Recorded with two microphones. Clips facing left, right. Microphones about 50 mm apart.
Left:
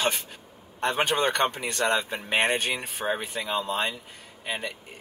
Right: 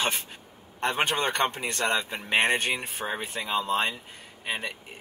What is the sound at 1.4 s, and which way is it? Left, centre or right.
Speech, right.